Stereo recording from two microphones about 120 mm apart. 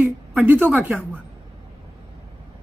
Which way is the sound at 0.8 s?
5° right (ahead or behind).